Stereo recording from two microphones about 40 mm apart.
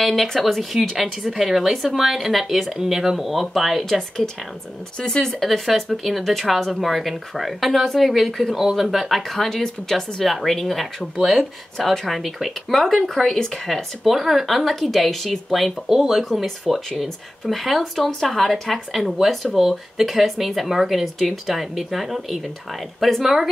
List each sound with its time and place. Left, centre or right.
0.0 s speech: centre
1.2 s a woman's voice: centre
4.9 s speech: centre
5.4 s a woman's voice: centre